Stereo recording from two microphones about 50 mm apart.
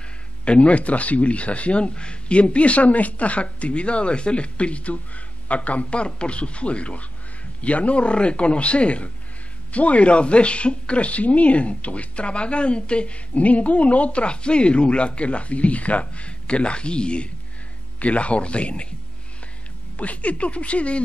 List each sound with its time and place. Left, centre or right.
0.5 s speech: left
20.0 s speech: left